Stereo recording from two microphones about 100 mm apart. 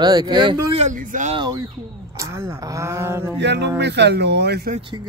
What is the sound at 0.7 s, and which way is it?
Speech, 90° right.